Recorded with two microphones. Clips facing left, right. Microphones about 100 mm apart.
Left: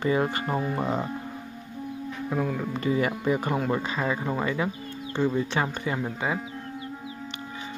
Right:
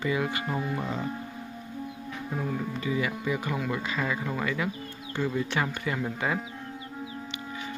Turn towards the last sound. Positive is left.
turn(degrees=15)  # may be behind; listen again after turning